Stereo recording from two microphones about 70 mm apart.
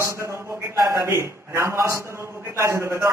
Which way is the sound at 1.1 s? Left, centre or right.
Right.